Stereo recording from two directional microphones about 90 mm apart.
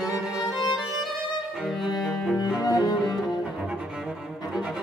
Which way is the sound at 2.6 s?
45° left (ahead or behind).